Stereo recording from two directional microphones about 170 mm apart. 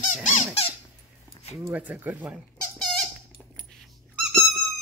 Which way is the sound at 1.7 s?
10° right (ahead or behind).